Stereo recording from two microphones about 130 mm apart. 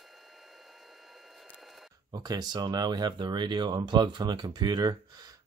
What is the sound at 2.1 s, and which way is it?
Speech, 30° right (ahead or behind).